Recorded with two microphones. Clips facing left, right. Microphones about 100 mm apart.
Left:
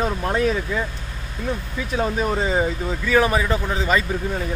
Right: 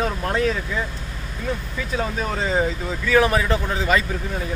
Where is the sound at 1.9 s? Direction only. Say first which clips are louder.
Left 3 dB; 10° left (ahead or behind).